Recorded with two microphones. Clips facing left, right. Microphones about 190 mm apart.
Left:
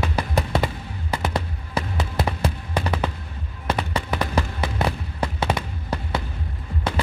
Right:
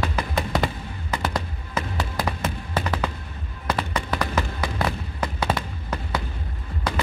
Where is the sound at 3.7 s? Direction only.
25° left (ahead or behind).